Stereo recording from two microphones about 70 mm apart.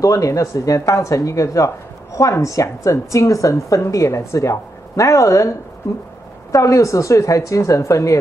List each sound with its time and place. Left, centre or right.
0.0 s speech: left